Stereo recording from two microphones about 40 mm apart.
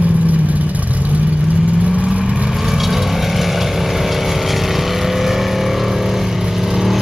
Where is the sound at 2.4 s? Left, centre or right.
Centre.